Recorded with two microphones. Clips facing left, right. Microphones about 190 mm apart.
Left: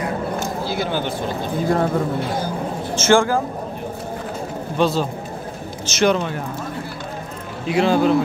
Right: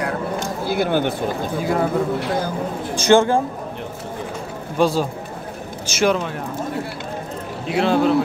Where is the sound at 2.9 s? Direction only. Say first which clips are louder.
Right 2 dB; 15° right (ahead or behind).